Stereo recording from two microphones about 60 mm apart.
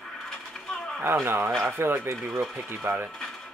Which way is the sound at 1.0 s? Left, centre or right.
Right.